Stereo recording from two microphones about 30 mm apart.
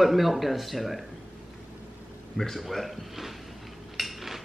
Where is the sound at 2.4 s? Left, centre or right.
Left.